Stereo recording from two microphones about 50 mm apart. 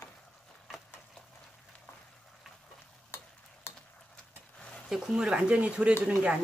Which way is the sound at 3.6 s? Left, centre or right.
Left.